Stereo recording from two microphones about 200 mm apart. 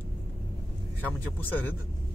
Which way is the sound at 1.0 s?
10° left (ahead or behind).